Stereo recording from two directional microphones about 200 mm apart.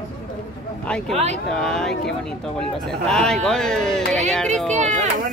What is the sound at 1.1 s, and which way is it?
Speech, 35° right (ahead or behind).